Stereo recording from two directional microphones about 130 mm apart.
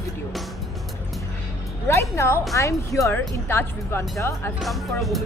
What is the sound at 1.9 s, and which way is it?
Speech, 20° left (ahead or behind).